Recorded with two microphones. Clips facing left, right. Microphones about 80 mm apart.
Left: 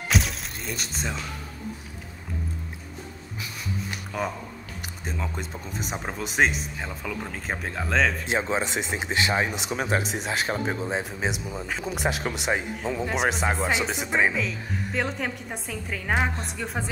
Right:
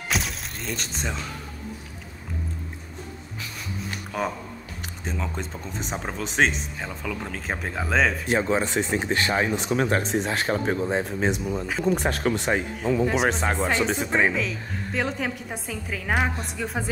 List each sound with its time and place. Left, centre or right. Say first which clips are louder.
0.1 s music: left 2 dB; centre
4.1 s speech: right 2 dB; centre
8.3 s speech: right 3 dB; centre